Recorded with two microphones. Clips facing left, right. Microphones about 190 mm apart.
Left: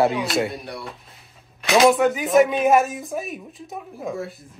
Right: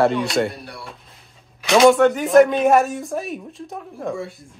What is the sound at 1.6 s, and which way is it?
Speech, centre (ahead or behind).